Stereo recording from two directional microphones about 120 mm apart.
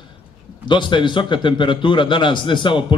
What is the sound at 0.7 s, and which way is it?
A man's voice, 40° left (ahead or behind).